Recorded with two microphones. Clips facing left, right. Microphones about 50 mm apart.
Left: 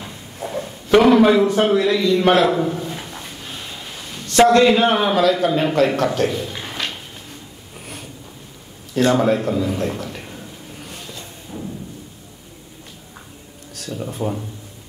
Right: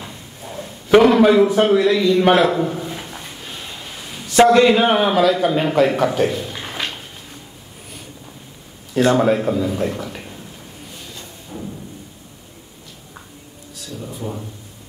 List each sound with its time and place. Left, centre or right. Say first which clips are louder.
0.4 s a sound: left 7 dB; left
1.1 s a man's voice: right 1 dB; centre
8.9 s a man's voice: right 1 dB; centre
11.5 s thump: even; centre
14.2 s speech: left 5 dB; left